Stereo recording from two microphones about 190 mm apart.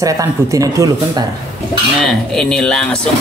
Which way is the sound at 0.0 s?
15° right (ahead or behind).